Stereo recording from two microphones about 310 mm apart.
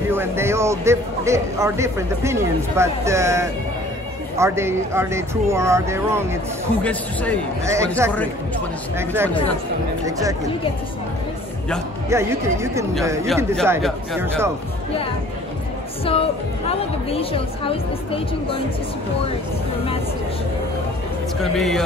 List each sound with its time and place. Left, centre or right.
0.1 s speech: centre
6.8 s speech: centre
7.6 s speech: centre
8.9 s speech: centre
12.1 s speech: centre
16.1 s a woman's voice: centre
21.4 s speech: centre